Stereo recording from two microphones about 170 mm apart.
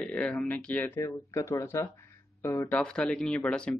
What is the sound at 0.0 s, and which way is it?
Speech, 10° left (ahead or behind).